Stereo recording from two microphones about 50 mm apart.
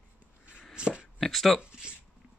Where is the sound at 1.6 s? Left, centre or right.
Centre.